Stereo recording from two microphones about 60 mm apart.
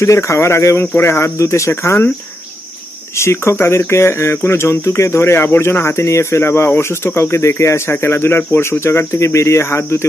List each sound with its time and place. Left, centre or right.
0.0 s speech: left
3.2 s speech: left